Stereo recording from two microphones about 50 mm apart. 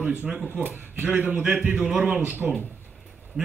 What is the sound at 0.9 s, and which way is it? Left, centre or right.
A man's voice, right.